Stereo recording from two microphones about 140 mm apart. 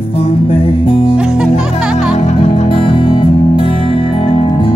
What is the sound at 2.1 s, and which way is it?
Music, 55° left (ahead or behind).